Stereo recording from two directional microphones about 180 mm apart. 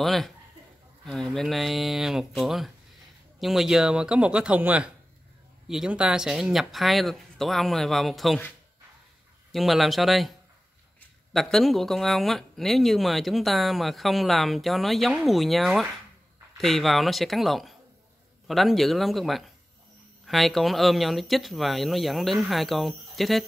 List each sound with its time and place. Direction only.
0.0 s speech: centre (ahead or behind)
9.5 s speech: centre (ahead or behind)
11.3 s speech: centre (ahead or behind)